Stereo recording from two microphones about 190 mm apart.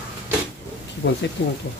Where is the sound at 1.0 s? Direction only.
90° left.